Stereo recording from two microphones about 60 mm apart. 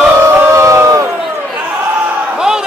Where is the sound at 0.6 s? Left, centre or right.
Right.